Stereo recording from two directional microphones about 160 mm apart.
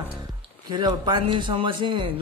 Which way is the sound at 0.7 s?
25° right (ahead or behind).